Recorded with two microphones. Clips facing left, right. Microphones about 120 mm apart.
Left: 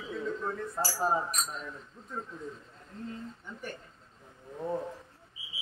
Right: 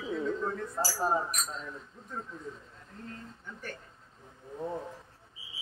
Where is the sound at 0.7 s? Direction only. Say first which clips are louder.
Left 1 dB; centre (ahead or behind).